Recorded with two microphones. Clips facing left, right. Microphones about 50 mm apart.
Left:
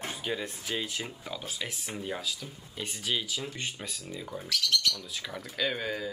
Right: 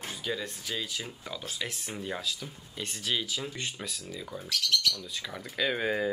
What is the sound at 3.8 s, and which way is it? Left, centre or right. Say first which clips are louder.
Speech: even; centre.